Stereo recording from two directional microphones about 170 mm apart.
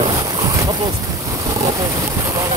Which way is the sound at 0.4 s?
20° right (ahead or behind).